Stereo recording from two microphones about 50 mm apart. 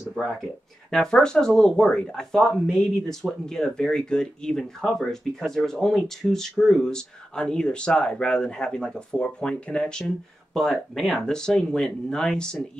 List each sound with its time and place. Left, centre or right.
0.8 s speech: centre
10.5 s speech: centre
11.1 s speech: centre